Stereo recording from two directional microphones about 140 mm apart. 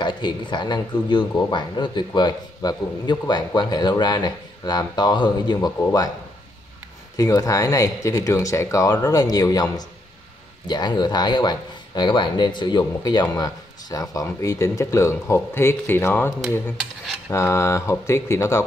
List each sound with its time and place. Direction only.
0.0 s speech: 35° left (ahead or behind)
7.2 s speech: 25° left (ahead or behind)
16.7 s cutlery: 5° right (ahead or behind)
17.3 s speech: 20° left (ahead or behind)